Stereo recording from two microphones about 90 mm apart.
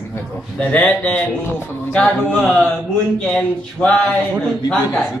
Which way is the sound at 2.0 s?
5° left (ahead or behind).